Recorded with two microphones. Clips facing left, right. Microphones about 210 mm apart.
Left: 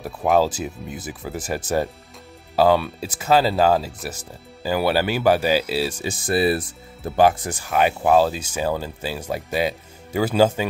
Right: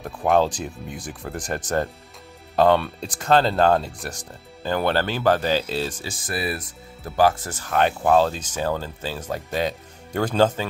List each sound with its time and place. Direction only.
0.0 s speech: 5° left (ahead or behind)
6.0 s speech: 25° left (ahead or behind); by 10.7 s 10° left (ahead or behind)